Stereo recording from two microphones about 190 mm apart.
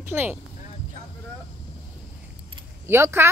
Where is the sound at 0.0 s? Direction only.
10° right (ahead or behind).